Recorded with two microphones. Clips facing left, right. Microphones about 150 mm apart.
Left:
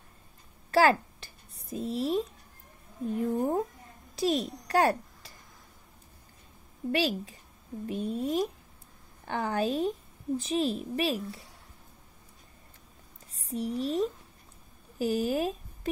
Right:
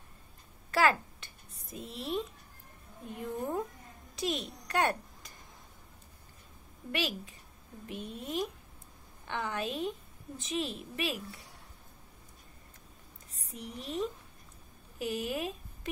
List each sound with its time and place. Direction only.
0.7 s a sound: 35° left (ahead or behind)
3.1 s a woman's voice: 35° left (ahead or behind)
6.9 s a woman's voice: 35° left (ahead or behind)
13.5 s a woman's voice: 35° left (ahead or behind)